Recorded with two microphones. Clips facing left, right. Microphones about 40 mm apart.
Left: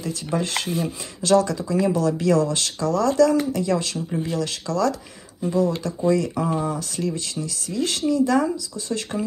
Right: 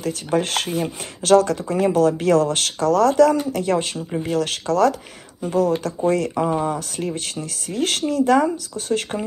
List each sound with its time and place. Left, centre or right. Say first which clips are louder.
0.0 s speech: right 4 dB; right
4.3 s speech: right 4 dB; right